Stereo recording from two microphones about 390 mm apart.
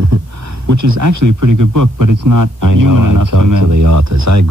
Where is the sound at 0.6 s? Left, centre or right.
Right.